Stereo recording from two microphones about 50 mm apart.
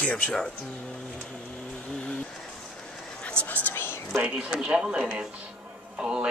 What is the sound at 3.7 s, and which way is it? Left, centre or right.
Whispering, left.